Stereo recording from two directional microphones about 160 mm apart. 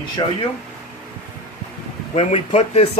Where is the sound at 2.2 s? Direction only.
45° left (ahead or behind).